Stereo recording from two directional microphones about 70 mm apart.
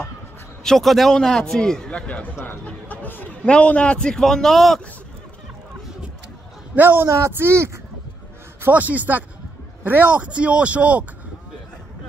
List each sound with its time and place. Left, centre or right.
0.7 s a man's voice: centre
6.7 s speech: right
8.6 s speech: right